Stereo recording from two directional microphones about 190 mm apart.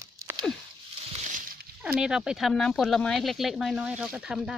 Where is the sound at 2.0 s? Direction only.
5° right (ahead or behind).